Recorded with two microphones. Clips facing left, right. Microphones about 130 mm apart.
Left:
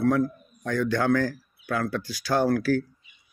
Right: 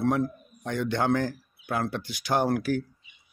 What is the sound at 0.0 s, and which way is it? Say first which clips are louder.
A man's voice: left 3 dB; 25° right (ahead or behind).